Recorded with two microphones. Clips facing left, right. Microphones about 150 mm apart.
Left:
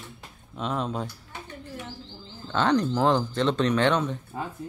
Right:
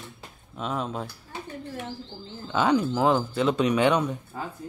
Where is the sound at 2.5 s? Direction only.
10° right (ahead or behind).